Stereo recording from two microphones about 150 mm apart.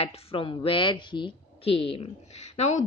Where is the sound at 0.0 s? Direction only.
40° left (ahead or behind).